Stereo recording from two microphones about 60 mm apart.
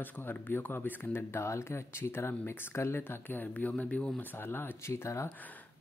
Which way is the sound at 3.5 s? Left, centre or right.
Left.